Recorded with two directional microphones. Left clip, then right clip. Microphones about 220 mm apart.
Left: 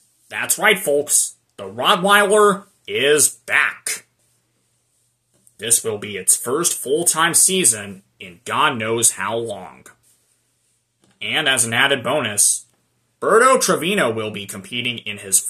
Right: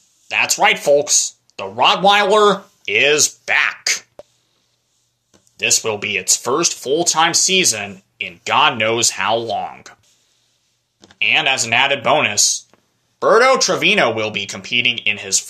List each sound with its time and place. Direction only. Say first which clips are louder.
0.3 s speech: right 3 dB; 10° left (ahead or behind)
5.7 s speech: right 5 dB; 10° left (ahead or behind)
11.3 s speech: right 1 dB; 15° left (ahead or behind)